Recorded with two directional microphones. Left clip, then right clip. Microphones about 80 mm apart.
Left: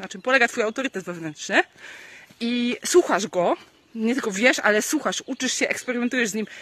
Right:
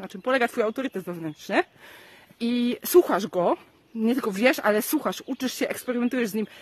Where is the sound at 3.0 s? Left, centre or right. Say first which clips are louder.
Left 2 dB; right.